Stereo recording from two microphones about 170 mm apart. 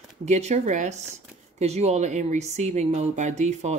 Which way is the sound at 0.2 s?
40° right (ahead or behind).